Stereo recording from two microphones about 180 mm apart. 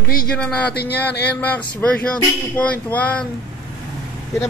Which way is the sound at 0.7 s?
65° left (ahead or behind).